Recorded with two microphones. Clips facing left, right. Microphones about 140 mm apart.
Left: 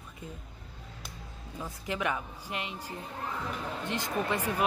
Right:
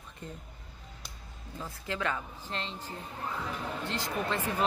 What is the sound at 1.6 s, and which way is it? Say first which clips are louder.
A woman's voice: left 1 dB; 15° left (ahead or behind).